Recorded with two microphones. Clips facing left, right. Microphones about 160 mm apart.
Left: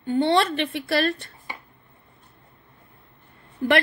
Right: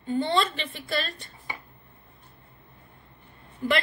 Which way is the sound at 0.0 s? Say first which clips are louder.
Left 5 dB; 70° left (ahead or behind).